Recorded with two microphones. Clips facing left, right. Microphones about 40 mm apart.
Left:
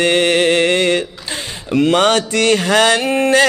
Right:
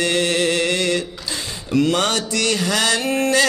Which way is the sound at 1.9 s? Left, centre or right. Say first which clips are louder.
Left 6 dB; left.